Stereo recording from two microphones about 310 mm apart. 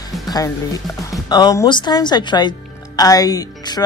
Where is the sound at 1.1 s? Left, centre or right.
Centre.